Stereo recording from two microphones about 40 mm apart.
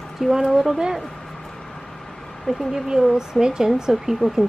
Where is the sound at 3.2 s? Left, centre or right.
Centre.